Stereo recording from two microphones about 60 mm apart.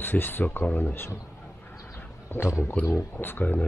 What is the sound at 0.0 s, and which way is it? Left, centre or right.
A man's voice, left.